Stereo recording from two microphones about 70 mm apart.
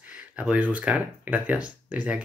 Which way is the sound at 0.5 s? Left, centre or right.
Right.